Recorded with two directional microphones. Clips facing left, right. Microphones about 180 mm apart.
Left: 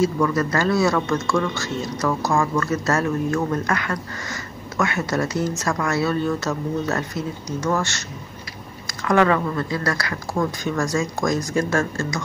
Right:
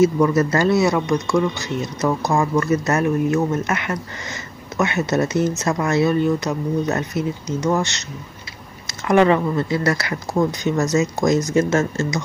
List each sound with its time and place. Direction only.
0.0 s speech: 20° right (ahead or behind)